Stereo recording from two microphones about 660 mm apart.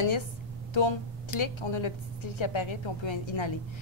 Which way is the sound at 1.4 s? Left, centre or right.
Left.